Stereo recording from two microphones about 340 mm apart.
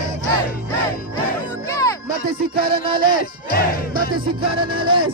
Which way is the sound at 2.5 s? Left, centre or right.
Right.